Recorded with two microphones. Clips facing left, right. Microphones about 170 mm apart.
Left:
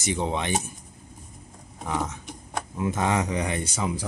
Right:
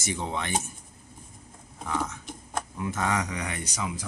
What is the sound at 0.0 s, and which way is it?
Speech, 20° left (ahead or behind).